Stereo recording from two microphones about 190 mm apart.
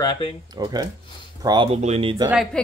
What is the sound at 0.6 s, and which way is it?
Speech, 20° right (ahead or behind).